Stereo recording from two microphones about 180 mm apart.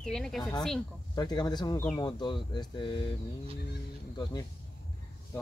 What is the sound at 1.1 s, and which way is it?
Speech, 20° left (ahead or behind).